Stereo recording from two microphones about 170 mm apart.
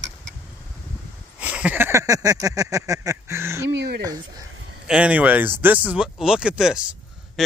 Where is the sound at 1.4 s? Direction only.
5° right (ahead or behind).